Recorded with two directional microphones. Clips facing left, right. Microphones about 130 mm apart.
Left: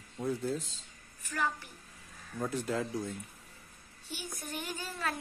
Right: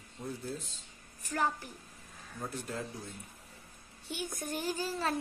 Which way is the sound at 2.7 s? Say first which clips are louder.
Left 6 dB; 90° left.